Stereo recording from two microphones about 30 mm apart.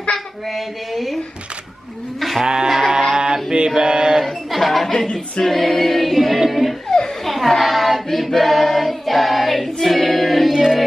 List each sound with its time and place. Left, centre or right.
2.1 s sheep: centre
2.4 s a sound: right
3.5 s mantra: right
4.2 s music: centre
4.9 s a capella: left
5.4 s choir: centre
6.1 s music: centre
7.2 s choir: centre
10.5 s music: right